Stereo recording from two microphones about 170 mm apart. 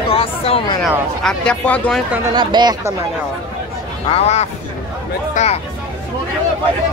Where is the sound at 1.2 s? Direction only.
5° left (ahead or behind).